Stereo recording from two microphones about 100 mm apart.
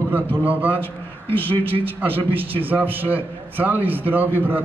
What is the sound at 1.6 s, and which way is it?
Speech, 65° right (ahead or behind).